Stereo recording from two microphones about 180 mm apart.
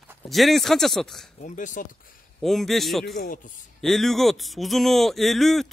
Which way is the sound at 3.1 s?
50° left (ahead or behind).